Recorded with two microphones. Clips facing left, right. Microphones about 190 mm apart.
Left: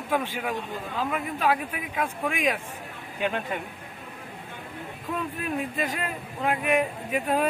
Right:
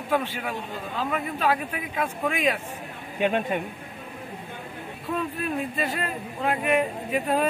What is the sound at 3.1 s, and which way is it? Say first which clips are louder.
Speech: right 5 dB; 20° right (ahead or behind).